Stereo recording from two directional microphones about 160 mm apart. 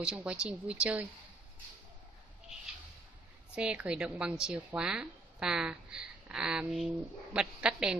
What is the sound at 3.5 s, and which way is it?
A woman's voice, 5° right (ahead or behind).